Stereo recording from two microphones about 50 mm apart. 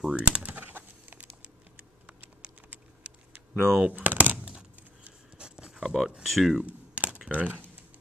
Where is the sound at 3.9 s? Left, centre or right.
Right.